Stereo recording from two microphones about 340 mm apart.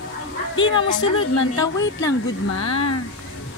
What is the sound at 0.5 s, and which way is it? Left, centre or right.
A woman's voice, left.